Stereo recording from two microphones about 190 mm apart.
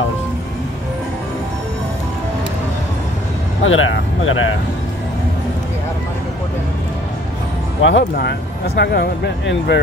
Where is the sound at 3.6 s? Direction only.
90° left.